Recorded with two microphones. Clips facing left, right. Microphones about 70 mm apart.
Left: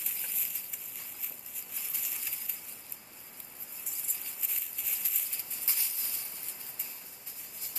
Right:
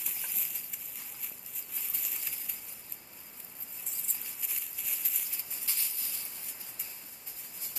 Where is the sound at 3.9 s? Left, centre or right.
Centre.